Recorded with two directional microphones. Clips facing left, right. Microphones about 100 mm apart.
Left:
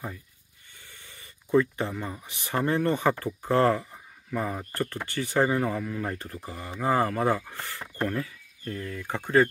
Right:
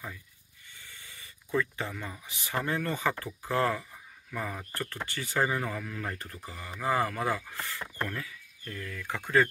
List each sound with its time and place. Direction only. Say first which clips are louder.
0.8 s snort: left 1 dB; 20° left (ahead or behind)
1.2 s speech: left 8 dB; 30° left (ahead or behind)